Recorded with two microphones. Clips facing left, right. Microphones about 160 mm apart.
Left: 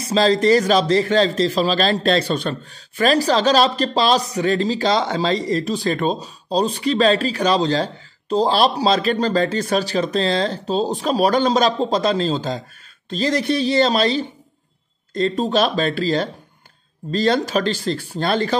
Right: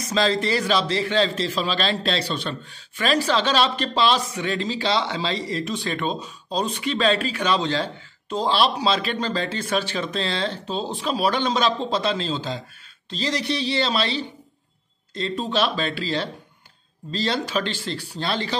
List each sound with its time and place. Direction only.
0.0 s a man's voice: 35° left (ahead or behind)